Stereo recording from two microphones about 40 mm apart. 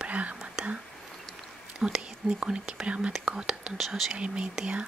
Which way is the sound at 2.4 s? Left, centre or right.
Right.